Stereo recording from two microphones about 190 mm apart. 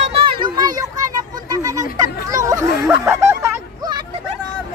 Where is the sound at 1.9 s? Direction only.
15° right (ahead or behind).